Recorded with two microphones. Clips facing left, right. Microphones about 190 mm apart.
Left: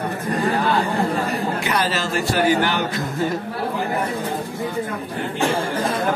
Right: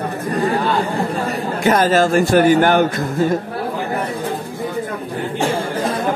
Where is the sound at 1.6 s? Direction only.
45° right (ahead or behind).